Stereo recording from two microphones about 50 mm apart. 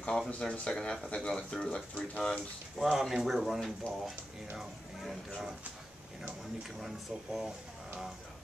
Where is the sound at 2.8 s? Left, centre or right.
Centre.